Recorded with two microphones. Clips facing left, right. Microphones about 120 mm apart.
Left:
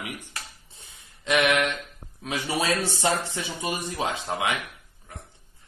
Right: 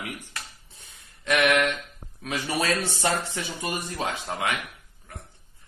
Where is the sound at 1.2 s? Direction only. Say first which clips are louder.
Even; 20° left (ahead or behind).